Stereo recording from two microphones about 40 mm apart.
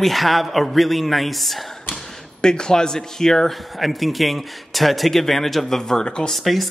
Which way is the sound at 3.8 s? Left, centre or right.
Centre.